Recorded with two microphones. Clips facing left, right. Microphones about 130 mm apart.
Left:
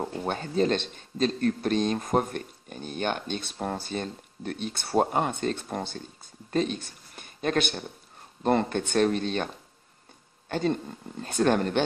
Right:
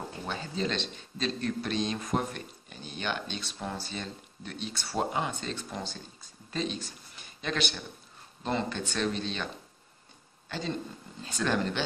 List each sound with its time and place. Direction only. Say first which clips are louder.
0.2 s speech: left 7 dB; 50° left (ahead or behind)
10.5 s speech: left 7 dB; 55° left (ahead or behind)